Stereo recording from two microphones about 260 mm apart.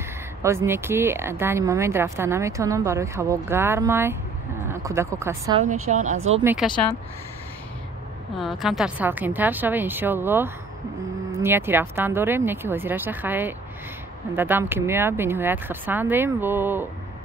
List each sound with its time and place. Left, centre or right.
0.4 s speech: centre
5.9 s speech: right
6.4 s speech: centre
8.4 s speech: centre